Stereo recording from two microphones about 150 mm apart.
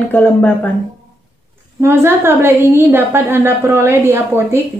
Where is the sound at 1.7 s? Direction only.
15° right (ahead or behind).